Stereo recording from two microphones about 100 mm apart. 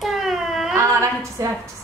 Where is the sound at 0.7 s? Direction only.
30° right (ahead or behind).